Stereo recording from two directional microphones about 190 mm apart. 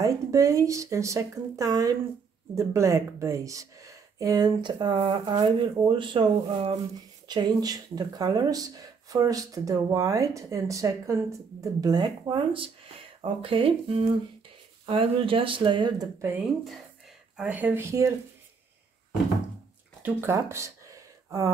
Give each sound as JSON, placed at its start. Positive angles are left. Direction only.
{"t": 0.0, "sound": "speech", "side_deg": -15}
{"t": 17.4, "sound": "speech", "side_deg": -10}
{"t": 20.0, "sound": "a sound", "side_deg": -15}